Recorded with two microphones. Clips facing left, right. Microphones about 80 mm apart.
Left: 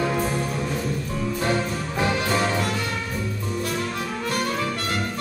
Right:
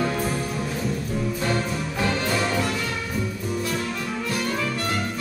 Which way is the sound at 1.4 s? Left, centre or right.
Centre.